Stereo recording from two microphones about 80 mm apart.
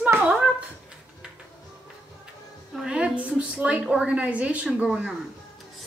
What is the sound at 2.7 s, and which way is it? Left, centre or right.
A woman's voice, centre.